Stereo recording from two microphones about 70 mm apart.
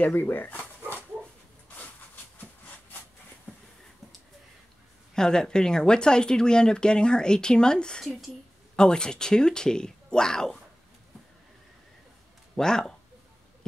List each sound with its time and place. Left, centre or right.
0.0 s a sound: left
5.1 s speech: centre
12.5 s speech: centre